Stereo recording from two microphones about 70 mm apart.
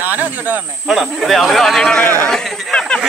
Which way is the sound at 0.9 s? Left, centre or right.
Centre.